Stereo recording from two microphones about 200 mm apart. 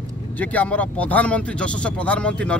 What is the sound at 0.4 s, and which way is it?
Speech, 5° left (ahead or behind).